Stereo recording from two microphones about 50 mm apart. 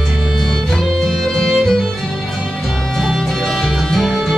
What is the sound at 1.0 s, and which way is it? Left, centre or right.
Music, centre.